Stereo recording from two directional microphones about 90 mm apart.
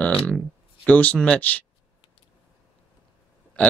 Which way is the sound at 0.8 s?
15° left (ahead or behind).